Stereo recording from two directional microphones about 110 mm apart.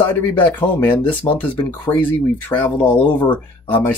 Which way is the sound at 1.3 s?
40° left (ahead or behind).